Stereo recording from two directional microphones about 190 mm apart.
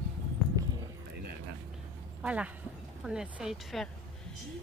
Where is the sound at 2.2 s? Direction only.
5° right (ahead or behind).